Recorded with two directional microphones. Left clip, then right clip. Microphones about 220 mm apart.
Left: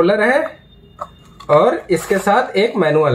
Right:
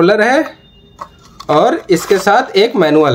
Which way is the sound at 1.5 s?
50° right (ahead or behind).